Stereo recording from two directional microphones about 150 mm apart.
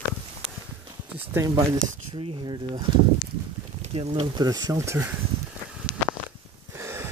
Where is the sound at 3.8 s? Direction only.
45° right (ahead or behind).